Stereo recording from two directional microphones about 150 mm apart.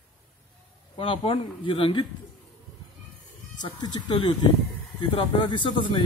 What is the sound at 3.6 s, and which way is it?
Speech, 30° left (ahead or behind).